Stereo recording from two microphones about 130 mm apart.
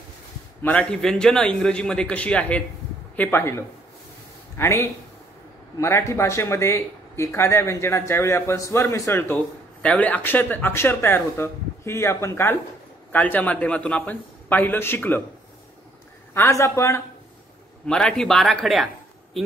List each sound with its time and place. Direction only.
0.6 s a man's voice: 10° left (ahead or behind)
16.3 s speech: 20° left (ahead or behind)
17.8 s speech: 5° left (ahead or behind)